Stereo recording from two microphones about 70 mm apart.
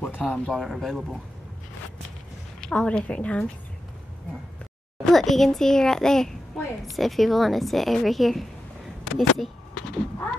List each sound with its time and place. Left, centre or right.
0.0 s a sound: left
0.5 s a woman's voice: centre
2.6 s a child's voice: centre
5.0 s a child's voice: centre